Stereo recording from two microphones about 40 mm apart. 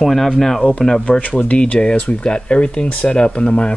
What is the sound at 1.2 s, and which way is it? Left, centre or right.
Speech, left.